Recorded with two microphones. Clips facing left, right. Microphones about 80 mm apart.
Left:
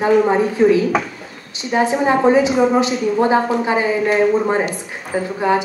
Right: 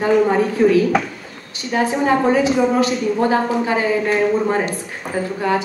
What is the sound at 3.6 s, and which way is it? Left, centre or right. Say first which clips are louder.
A woman's voice: left 1 dB; centre.